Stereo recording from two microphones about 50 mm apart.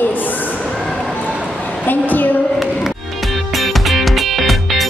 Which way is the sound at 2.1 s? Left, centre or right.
Left.